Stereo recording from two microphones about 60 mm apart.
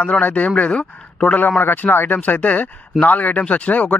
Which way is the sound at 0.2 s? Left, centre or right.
Left.